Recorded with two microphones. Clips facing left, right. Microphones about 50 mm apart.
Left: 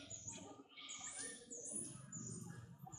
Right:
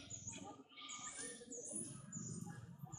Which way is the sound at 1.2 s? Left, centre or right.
Centre.